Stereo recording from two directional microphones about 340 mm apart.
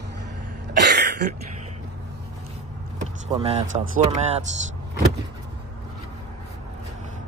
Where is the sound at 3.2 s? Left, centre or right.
Centre.